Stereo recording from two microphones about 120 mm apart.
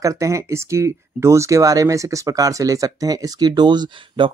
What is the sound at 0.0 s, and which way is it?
Speech, 25° right (ahead or behind).